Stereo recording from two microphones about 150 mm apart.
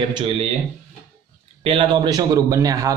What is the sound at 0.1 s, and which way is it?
Speech, 35° right (ahead or behind).